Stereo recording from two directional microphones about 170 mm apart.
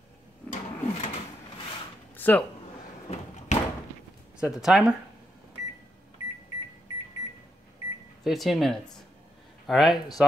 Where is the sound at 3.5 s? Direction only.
40° left (ahead or behind).